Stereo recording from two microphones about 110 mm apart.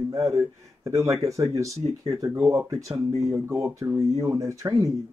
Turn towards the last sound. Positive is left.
turn(degrees=-30)  # may be behind; listen again after turning